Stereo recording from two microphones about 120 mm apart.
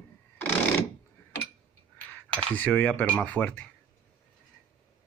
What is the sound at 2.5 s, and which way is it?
Speech, 15° left (ahead or behind).